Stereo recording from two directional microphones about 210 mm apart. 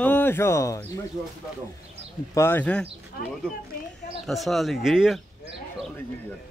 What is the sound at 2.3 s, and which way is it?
Speech, 10° left (ahead or behind).